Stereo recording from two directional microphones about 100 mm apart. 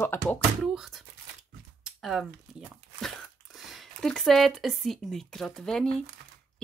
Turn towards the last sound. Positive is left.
turn(degrees=5)  # may be behind; listen again after turning